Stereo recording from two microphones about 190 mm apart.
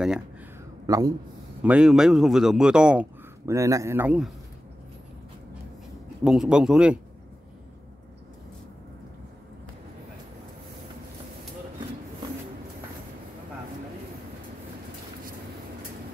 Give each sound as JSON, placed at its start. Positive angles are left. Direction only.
{"t": 0.8, "sound": "a man's voice", "side_deg": -20}
{"t": 1.6, "sound": "speech", "side_deg": -5}
{"t": 6.2, "sound": "speech", "side_deg": -5}